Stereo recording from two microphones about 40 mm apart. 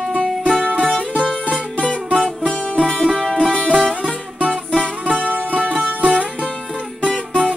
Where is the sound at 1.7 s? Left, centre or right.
Left.